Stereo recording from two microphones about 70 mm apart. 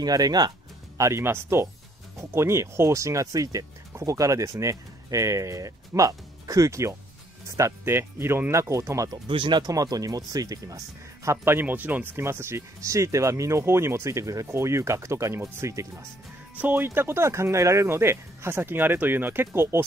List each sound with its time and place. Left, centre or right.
0.0 s speech: right
0.9 s speech: right
1.2 s speech: right
3.3 s speech: right
9.1 s speech: right
9.7 s speech: right
11.2 s speech: right
12.3 s speech: right
14.5 s speech: right
16.5 s speech: right